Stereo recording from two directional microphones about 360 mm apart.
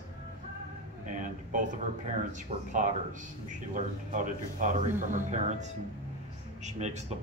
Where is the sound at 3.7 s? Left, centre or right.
Right.